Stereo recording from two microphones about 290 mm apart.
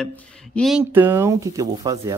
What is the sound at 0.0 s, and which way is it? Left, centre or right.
Speech, centre.